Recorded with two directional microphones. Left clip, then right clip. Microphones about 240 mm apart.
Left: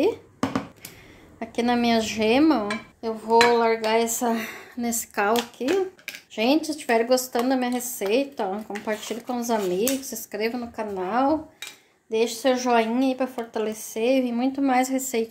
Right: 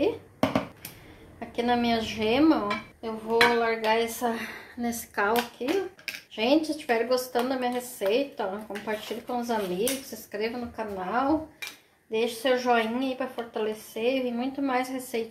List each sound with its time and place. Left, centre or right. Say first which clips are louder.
1.4 s speech: left 3 dB; left